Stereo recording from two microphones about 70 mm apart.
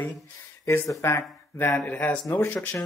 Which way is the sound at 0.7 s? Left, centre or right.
Left.